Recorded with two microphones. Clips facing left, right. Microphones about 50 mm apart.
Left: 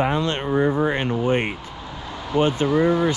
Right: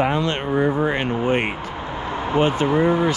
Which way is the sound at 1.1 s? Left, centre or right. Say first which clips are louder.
Right 1 dB; right.